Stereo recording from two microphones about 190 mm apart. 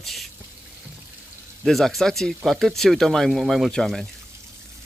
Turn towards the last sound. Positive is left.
turn(degrees=0)  # may be behind; listen again after turning